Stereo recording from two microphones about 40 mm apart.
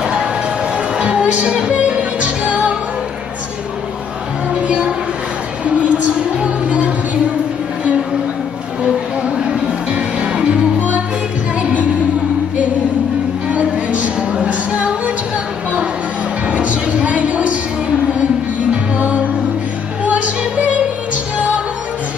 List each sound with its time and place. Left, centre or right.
0.0 s a sound: centre
0.7 s music: right
4.6 s a sound: right
5.7 s music: right
9.8 s music: right
13.5 s music: right
16.4 s music: right
18.7 s music: right